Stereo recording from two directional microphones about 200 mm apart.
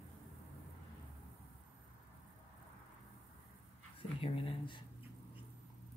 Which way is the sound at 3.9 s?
25° left (ahead or behind).